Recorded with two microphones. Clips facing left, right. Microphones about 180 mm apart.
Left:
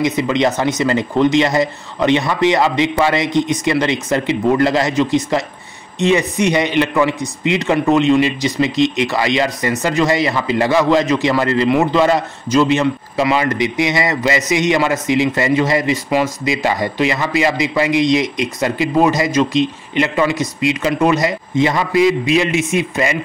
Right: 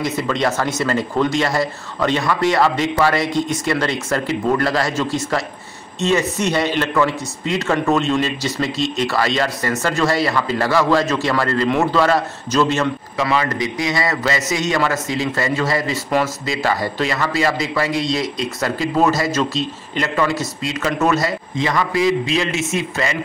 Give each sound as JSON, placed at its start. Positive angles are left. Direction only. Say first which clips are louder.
{"t": 0.0, "sound": "a man's voice", "louder": "left 4 dB", "side_deg": 20}